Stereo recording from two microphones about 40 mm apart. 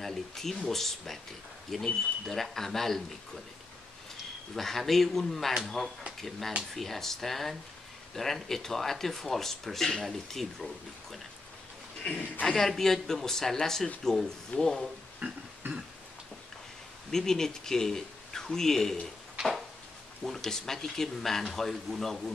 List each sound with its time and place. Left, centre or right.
0.0 s speech: centre
4.6 s speech: centre
12.0 s a man's voice: left
12.4 s speech: centre
15.2 s a sound: right
17.1 s speech: centre
20.2 s speech: centre